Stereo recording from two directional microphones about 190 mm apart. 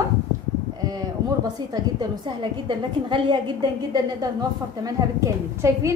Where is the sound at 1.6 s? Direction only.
20° right (ahead or behind).